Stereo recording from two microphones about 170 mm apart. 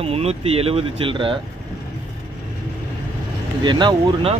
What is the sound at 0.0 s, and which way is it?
Speech, 35° right (ahead or behind).